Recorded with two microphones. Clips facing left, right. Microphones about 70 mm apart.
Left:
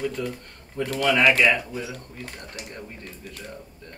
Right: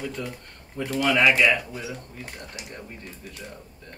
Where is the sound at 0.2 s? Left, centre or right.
Centre.